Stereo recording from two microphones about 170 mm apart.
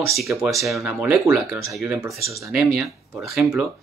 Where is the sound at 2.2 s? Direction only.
15° right (ahead or behind).